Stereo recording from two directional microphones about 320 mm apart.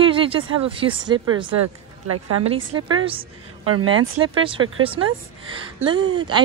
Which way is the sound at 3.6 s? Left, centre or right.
Right.